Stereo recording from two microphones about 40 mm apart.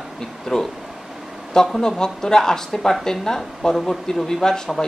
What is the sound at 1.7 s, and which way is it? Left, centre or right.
Speech, centre.